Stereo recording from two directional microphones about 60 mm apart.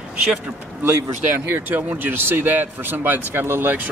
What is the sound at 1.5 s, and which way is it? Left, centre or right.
Speech, right.